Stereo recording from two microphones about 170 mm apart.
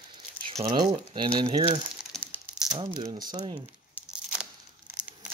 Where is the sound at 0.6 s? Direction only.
25° right (ahead or behind).